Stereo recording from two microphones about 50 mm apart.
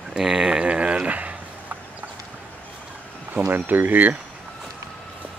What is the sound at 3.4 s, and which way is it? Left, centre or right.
Speech, right.